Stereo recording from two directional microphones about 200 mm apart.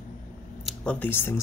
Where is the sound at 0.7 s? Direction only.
5° left (ahead or behind).